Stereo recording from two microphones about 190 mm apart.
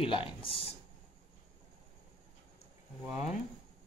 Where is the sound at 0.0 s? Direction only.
30° left (ahead or behind).